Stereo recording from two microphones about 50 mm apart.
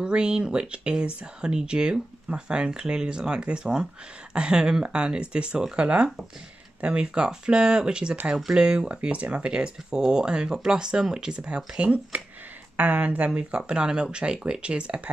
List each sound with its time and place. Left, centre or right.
0.0 s speech: centre